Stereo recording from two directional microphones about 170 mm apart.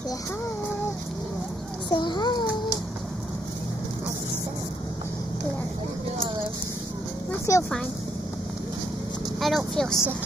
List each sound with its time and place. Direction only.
1.9 s a sound: 25° left (ahead or behind)
7.5 s speech: 15° left (ahead or behind)
9.4 s speech: centre (ahead or behind)